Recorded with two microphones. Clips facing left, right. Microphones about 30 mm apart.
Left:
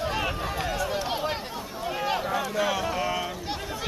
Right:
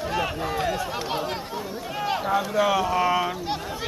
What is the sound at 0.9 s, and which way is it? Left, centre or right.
Chatter, centre.